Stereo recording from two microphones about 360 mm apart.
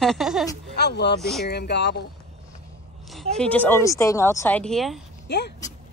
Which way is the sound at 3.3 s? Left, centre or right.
Centre.